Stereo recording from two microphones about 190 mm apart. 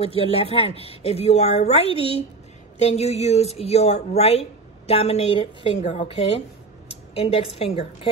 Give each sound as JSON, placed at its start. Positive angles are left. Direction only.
{"t": 0.0, "sound": "a woman's voice", "side_deg": 30}